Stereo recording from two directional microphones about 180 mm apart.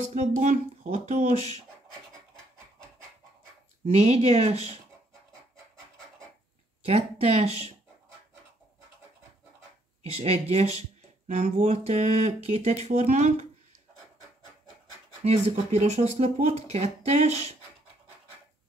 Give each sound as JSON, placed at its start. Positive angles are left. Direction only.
{"t": 0.1, "sound": "speech", "side_deg": -40}
{"t": 3.9, "sound": "speech", "side_deg": -35}
{"t": 6.8, "sound": "speech", "side_deg": -35}
{"t": 10.5, "sound": "speech", "side_deg": -40}
{"t": 15.2, "sound": "speech", "side_deg": -35}